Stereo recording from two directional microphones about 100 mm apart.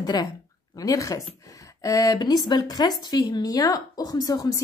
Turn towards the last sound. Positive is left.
turn(degrees=40)  # may be behind; listen again after turning